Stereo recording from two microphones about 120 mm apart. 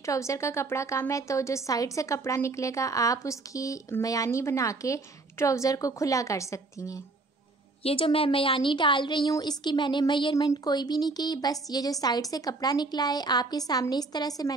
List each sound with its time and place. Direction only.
0.0 s a woman's voice: 25° left (ahead or behind)
7.8 s a woman's voice: 50° left (ahead or behind)
10.3 s a woman's voice: 30° left (ahead or behind)